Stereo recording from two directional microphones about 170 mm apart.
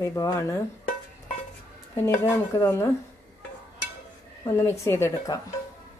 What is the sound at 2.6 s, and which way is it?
Speech, 15° left (ahead or behind).